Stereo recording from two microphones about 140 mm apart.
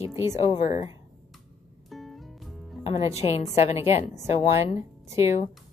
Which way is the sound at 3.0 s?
20° right (ahead or behind).